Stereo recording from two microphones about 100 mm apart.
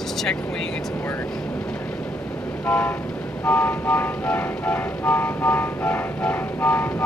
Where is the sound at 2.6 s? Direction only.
15° left (ahead or behind).